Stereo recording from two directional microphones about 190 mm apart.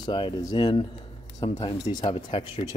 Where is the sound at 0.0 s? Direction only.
25° left (ahead or behind).